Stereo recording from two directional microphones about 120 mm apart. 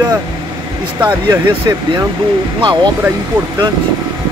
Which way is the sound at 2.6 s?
40° right (ahead or behind).